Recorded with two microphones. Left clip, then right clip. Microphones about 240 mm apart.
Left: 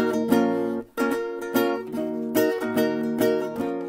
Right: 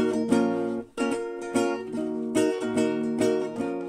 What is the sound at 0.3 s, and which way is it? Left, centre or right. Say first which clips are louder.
Music: left 3 dB; left.